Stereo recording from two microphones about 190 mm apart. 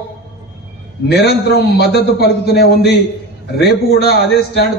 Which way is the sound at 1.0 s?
60° left (ahead or behind).